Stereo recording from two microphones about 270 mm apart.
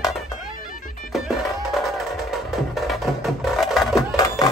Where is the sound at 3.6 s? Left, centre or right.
Centre.